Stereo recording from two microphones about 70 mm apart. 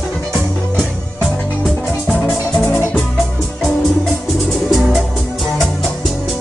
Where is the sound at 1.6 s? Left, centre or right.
Centre.